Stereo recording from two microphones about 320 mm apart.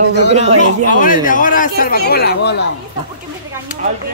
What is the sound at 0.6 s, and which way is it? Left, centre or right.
Speech, left.